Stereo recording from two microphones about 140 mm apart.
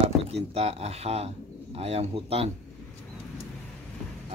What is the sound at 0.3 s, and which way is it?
Speech, 45° right (ahead or behind).